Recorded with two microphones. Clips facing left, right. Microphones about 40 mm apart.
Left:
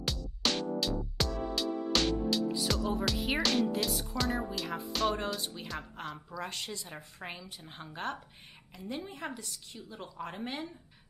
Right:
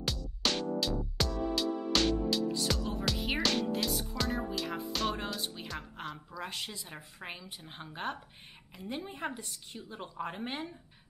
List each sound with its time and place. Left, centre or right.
0.0 s music: centre
8.7 s a woman's voice: centre